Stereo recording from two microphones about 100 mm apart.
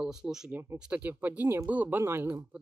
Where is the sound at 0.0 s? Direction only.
5° right (ahead or behind).